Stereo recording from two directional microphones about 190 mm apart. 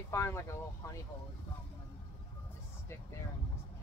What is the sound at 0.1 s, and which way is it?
Speech, 15° left (ahead or behind).